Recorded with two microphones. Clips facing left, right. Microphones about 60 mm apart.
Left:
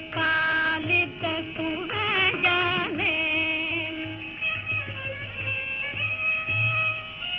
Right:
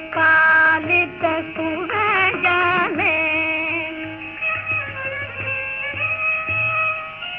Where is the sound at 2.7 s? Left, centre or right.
Right.